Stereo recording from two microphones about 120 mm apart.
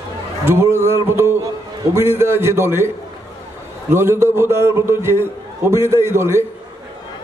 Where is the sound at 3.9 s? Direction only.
20° right (ahead or behind).